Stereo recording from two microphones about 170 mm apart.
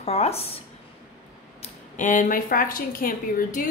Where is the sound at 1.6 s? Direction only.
45° left (ahead or behind).